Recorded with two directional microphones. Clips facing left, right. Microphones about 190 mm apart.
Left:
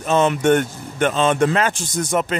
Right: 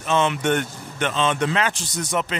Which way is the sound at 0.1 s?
40° left (ahead or behind).